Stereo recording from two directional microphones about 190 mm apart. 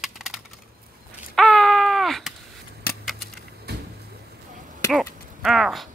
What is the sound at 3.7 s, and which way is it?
Vehicle, 60° right (ahead or behind).